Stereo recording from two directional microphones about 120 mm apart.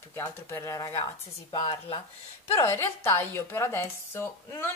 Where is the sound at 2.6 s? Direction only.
20° left (ahead or behind).